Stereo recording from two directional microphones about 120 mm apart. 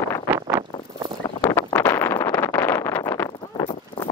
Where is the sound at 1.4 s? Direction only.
25° left (ahead or behind).